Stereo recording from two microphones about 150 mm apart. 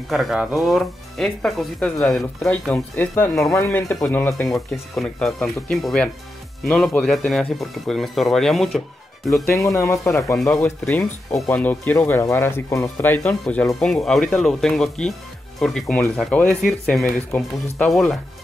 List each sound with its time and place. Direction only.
0.1 s speech: centre (ahead or behind); by 4.5 s 15° left (ahead or behind)
4.6 s speech: 5° left (ahead or behind)
9.8 s speech: 20° left (ahead or behind)
10.4 s speech: 5° left (ahead or behind)